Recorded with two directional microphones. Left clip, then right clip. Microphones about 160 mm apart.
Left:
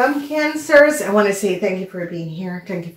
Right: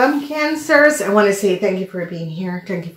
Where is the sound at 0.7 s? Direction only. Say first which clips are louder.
Left 1 dB; 40° right (ahead or behind).